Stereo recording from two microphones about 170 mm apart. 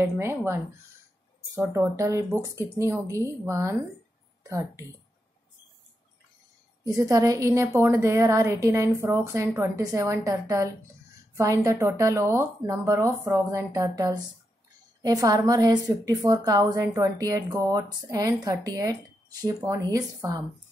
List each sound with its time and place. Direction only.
0.0 s a woman's voice: 15° right (ahead or behind)
1.5 s a woman's voice: 15° right (ahead or behind)
6.8 s a woman's voice: 20° right (ahead or behind)